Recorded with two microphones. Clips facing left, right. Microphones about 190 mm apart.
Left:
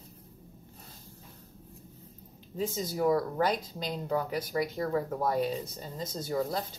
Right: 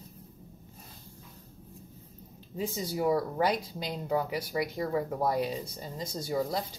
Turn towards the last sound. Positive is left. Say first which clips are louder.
# even
turn(degrees=-10)  # may be behind; listen again after turning